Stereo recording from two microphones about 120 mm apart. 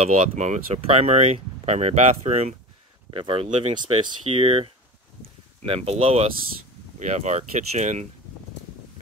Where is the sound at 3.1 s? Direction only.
50° right (ahead or behind).